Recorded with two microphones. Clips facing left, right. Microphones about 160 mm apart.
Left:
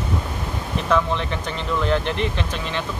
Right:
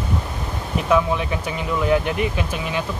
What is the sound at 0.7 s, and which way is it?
Speech, 10° right (ahead or behind).